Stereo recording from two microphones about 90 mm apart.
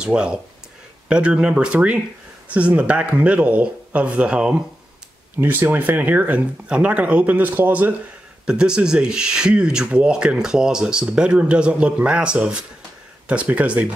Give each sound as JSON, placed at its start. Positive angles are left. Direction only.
{"t": 0.0, "sound": "speech", "side_deg": -10}
{"t": 8.5, "sound": "speech", "side_deg": -10}